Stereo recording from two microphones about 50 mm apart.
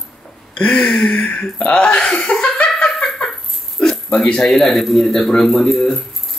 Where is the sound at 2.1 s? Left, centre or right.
Centre.